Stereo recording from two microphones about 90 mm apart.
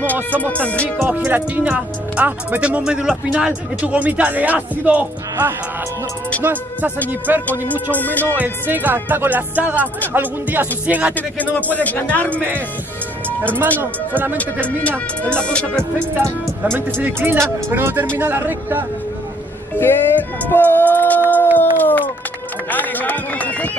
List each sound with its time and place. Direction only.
0.0 s music: 15° left (ahead or behind)
1.2 s speech: 15° right (ahead or behind)
6.4 s music: 20° right (ahead or behind)
7.9 s music: 20° left (ahead or behind)
8.4 s music: 20° right (ahead or behind)
11.6 s music: 20° left (ahead or behind)
12.4 s music: 20° right (ahead or behind)
13.7 s music: 25° right (ahead or behind)
14.8 s music: 10° left (ahead or behind)
17.0 s music: 20° right (ahead or behind)
19.8 s speech: 20° left (ahead or behind)
21.5 s a sound: 20° left (ahead or behind)